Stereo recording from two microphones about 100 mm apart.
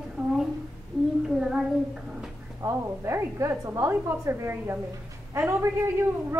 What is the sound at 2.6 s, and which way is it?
A woman's voice, 30° right (ahead or behind).